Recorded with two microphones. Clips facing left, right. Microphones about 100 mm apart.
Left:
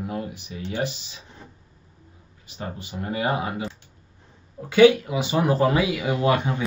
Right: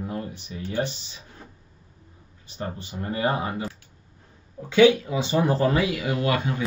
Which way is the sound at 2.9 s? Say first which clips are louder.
Even; 15° left (ahead or behind).